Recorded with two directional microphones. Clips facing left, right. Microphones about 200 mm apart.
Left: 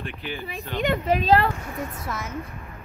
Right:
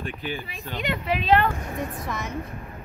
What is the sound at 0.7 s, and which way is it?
Speech, 50° left (ahead or behind).